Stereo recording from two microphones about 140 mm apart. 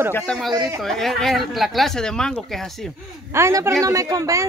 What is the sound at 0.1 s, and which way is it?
Speech, 5° left (ahead or behind).